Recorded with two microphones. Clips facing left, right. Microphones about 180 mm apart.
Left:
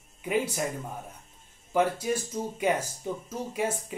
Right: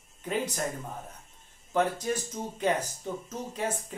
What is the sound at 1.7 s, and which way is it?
Speech, 10° left (ahead or behind).